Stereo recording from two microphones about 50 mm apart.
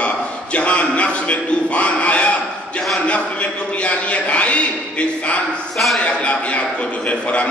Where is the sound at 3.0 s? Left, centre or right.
Left.